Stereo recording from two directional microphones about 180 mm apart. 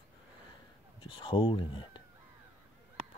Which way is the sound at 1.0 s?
25° left (ahead or behind).